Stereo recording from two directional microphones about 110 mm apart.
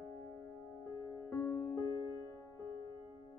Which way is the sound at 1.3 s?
20° left (ahead or behind).